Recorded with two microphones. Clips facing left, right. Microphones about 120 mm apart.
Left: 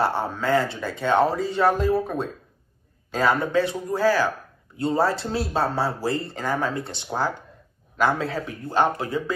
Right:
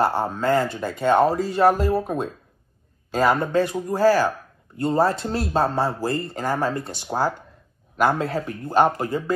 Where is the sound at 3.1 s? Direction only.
Centre (ahead or behind).